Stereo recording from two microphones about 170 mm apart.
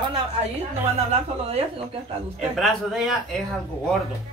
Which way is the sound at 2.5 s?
Centre (ahead or behind).